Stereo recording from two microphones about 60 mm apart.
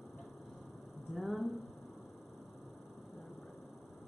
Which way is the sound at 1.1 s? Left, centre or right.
Centre.